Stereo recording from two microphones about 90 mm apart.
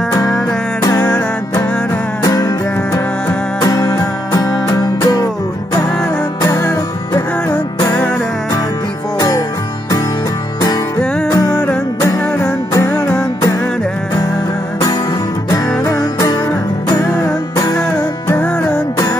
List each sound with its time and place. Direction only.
2.2 s music: 40° left (ahead or behind)
6.4 s music: 40° left (ahead or behind)
11.2 s music: 40° left (ahead or behind)
12.0 s music: 25° left (ahead or behind)
15.5 s music: 45° left (ahead or behind)